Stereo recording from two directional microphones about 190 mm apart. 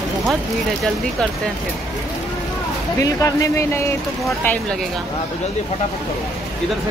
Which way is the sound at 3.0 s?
15° left (ahead or behind).